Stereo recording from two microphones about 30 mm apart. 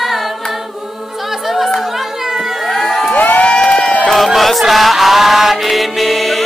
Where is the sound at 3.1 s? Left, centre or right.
Left.